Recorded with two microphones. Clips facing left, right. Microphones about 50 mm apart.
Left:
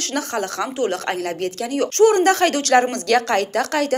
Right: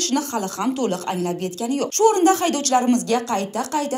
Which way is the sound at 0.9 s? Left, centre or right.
Left.